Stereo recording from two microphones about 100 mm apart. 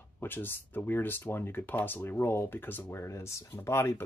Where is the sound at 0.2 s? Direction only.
20° left (ahead or behind).